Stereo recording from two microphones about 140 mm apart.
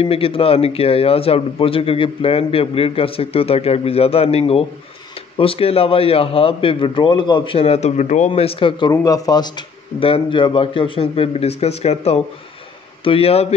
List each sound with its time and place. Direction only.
0.0 s a man's voice: 40° left (ahead or behind); by 8.3 s 55° left (ahead or behind)
8.3 s a man's voice: 40° left (ahead or behind)
8.9 s speech: 25° left (ahead or behind)
9.9 s a man's voice: 40° left (ahead or behind)